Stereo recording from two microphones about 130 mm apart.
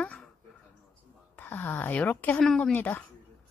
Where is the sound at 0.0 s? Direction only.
5° left (ahead or behind).